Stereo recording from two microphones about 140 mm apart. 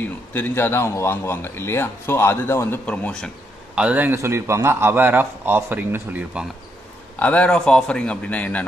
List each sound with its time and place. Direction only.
0.3 s a man's voice: 15° left (ahead or behind)
2.9 s a man's voice: 5° left (ahead or behind)
3.7 s a man's voice: 10° right (ahead or behind)
7.2 s a man's voice: 10° left (ahead or behind)